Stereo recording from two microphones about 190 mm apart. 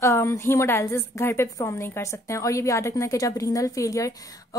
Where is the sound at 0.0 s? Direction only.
15° left (ahead or behind).